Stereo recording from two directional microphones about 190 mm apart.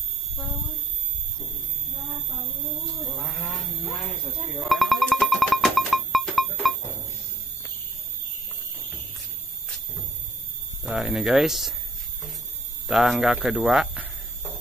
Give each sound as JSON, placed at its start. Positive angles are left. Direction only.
{"t": 3.2, "sound": "a sound", "side_deg": 0}
{"t": 10.9, "sound": "speech", "side_deg": 0}
{"t": 12.8, "sound": "speech", "side_deg": 0}